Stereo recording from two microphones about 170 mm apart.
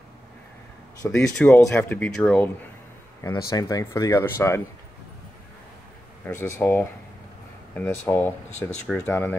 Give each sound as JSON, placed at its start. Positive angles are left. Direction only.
{"t": 1.0, "sound": "speech", "side_deg": 10}
{"t": 6.2, "sound": "speech", "side_deg": 10}